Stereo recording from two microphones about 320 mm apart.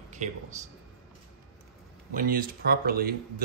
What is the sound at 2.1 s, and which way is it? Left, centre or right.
Speech, right.